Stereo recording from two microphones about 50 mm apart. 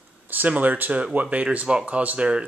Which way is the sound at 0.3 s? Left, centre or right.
Right.